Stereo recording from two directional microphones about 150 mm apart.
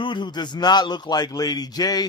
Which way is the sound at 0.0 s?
30° left (ahead or behind).